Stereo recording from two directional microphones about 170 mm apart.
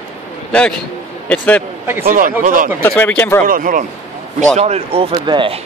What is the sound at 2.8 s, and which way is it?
Speech, 10° left (ahead or behind).